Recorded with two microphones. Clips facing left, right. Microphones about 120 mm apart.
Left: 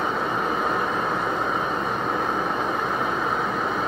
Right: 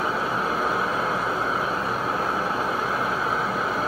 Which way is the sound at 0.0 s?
5° right (ahead or behind).